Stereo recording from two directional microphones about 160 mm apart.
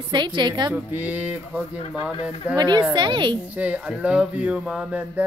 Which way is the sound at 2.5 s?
25° right (ahead or behind).